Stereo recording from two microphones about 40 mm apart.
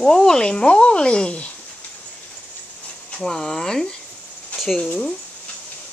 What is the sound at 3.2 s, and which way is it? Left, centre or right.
Speech, centre.